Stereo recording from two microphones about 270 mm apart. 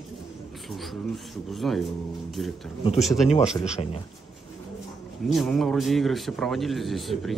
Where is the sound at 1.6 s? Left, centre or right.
Centre.